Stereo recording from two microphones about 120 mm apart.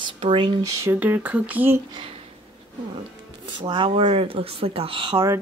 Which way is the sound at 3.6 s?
45° right (ahead or behind).